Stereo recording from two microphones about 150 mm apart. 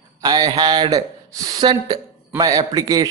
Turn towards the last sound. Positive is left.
turn(degrees=-25)  # may be behind; listen again after turning